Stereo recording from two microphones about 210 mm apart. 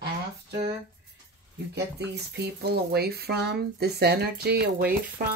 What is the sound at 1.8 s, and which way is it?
Speech, 50° right (ahead or behind).